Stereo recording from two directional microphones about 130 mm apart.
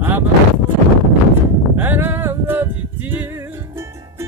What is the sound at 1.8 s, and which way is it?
Music, 15° right (ahead or behind).